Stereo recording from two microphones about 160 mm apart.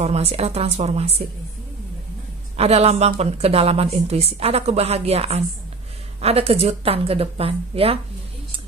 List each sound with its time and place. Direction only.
0.0 s a woman's voice: 40° right (ahead or behind)
2.5 s a woman's voice: 40° right (ahead or behind)